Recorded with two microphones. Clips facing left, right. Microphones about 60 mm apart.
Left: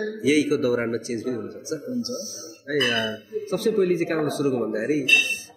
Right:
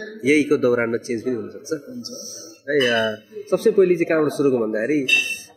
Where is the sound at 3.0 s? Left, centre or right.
Right.